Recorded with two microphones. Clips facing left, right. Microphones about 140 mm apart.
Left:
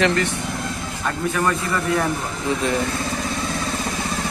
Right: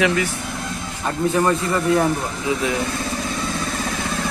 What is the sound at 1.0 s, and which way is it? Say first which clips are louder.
Speech: right 3 dB; 25° right (ahead or behind).